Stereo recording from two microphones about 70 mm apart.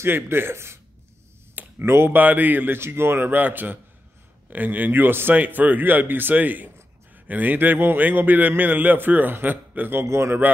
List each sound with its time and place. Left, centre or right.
0.0 s a man's voice: right
10.0 s speech: right